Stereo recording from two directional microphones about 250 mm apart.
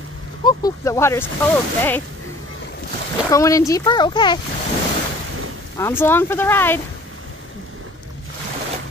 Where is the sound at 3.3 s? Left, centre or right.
Centre.